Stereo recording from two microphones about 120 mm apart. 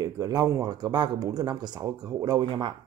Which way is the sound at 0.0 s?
30° right (ahead or behind).